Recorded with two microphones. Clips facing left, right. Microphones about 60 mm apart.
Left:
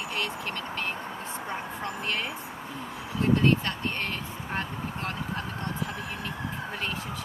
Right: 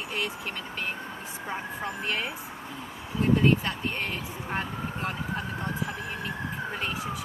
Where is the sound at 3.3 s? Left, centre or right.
Centre.